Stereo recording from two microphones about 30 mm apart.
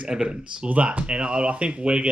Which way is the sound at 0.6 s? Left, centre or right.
Right.